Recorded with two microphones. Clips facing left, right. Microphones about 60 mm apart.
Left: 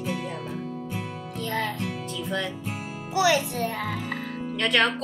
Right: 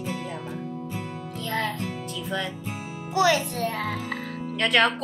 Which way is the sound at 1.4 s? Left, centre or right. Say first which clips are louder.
Even; centre.